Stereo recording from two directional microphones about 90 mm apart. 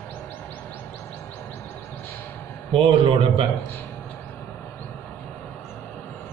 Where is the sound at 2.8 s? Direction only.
80° right.